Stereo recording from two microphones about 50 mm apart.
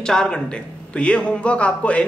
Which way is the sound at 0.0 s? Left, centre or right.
Centre.